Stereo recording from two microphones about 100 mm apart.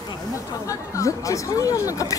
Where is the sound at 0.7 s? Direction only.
35° left (ahead or behind).